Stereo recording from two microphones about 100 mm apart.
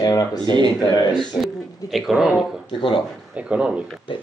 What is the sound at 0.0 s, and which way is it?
Speech, 40° left (ahead or behind).